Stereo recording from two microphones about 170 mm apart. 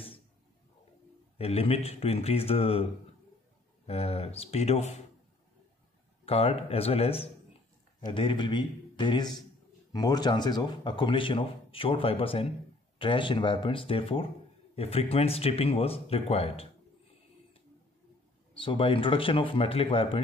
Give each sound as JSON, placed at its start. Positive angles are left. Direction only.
{"t": 1.4, "sound": "speech", "side_deg": 35}
{"t": 6.2, "sound": "speech", "side_deg": 35}
{"t": 18.5, "sound": "speech", "side_deg": 30}